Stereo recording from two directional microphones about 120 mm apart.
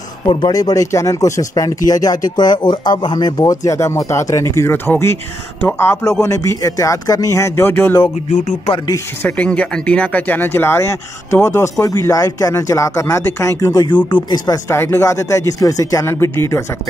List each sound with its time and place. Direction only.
0.3 s speech: 35° left (ahead or behind); by 8.0 s 15° left (ahead or behind)
8.3 s speech: 75° left (ahead or behind)
8.8 s speech: 25° left (ahead or behind)
9.4 s speech: 10° left (ahead or behind)